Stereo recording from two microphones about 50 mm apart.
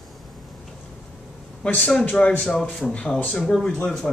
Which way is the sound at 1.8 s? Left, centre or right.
Centre.